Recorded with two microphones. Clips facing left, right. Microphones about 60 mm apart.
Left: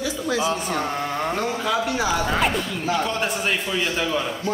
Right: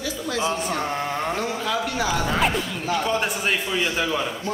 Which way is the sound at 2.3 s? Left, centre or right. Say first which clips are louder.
Even; centre.